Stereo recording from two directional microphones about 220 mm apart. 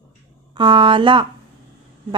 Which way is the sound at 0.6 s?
20° right (ahead or behind).